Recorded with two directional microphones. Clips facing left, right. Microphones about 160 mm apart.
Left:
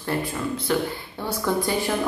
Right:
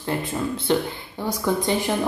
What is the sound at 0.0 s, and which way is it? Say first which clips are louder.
A woman's voice: right 1 dB; 20° right (ahead or behind).